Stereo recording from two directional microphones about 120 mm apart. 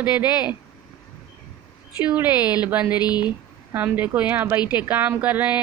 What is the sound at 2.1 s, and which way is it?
Speech, 15° right (ahead or behind).